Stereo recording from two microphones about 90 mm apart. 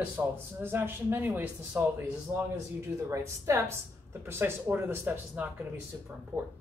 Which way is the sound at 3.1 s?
30° right (ahead or behind).